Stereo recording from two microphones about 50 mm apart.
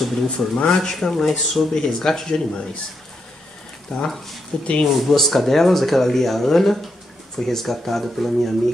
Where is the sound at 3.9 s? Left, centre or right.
Centre.